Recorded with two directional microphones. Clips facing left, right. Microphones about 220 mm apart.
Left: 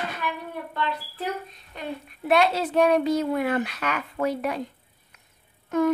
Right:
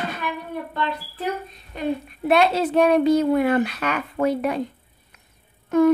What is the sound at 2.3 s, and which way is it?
A child's voice, 25° right (ahead or behind).